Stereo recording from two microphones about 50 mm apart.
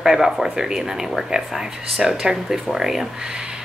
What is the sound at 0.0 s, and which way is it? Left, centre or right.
A woman's voice, centre.